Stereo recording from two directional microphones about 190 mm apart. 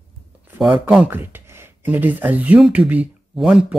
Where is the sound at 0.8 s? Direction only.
10° right (ahead or behind).